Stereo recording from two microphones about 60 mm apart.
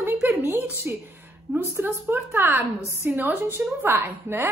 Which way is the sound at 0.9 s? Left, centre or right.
Right.